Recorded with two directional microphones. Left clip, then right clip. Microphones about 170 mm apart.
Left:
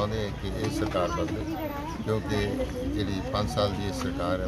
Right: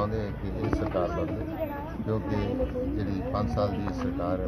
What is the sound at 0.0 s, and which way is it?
Vehicle, 15° left (ahead or behind).